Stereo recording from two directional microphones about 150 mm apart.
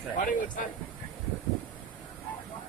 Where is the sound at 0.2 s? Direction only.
65° left (ahead or behind).